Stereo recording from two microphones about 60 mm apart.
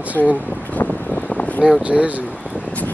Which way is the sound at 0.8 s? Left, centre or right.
Left.